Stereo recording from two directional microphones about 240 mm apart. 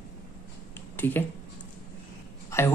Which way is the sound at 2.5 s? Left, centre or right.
Centre.